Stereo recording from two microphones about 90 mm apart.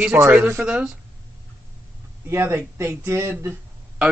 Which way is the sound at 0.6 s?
10° right (ahead or behind).